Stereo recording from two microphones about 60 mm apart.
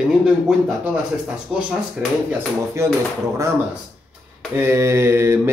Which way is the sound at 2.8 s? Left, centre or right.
Right.